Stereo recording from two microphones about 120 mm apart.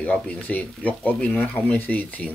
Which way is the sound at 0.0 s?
10° left (ahead or behind).